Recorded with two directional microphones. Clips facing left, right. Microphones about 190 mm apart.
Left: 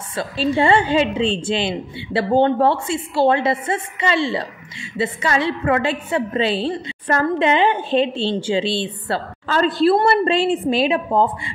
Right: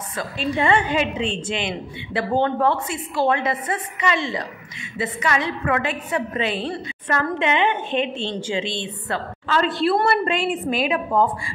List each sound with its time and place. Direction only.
0.5 s a woman's voice: 30° left (ahead or behind)